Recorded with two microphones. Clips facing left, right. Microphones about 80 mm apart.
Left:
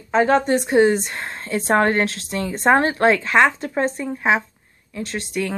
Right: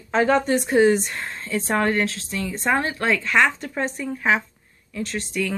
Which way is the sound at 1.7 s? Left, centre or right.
Left.